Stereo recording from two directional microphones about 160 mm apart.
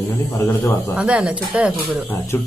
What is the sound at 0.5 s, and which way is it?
Speech, 15° left (ahead or behind).